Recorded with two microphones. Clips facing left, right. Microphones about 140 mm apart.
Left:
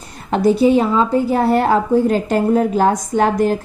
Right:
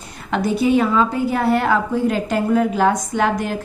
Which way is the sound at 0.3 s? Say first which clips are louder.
Left 4 dB; 35° left (ahead or behind).